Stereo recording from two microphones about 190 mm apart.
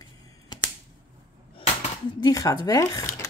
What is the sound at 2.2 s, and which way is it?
Speech, 20° left (ahead or behind).